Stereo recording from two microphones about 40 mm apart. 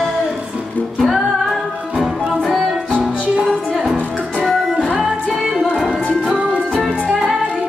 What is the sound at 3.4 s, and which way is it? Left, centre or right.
Music, centre.